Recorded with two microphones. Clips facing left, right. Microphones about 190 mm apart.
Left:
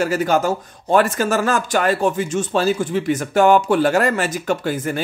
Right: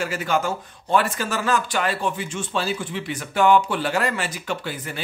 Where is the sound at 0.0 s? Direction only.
40° left (ahead or behind).